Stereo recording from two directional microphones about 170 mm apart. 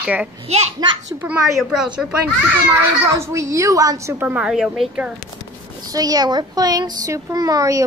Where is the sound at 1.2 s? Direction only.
Centre (ahead or behind).